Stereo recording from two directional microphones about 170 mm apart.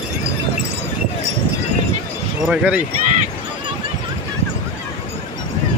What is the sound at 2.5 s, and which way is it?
Speech, 5° right (ahead or behind).